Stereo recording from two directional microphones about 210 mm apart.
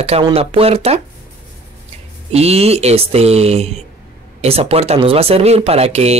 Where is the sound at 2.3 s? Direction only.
30° right (ahead or behind).